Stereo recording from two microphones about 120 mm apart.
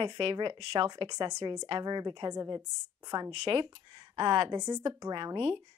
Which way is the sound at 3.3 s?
50° right (ahead or behind).